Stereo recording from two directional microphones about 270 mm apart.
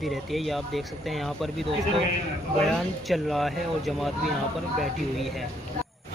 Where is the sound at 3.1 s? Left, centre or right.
Centre.